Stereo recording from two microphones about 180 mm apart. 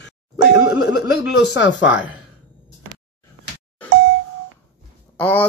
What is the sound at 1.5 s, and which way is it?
Speech, 75° left (ahead or behind).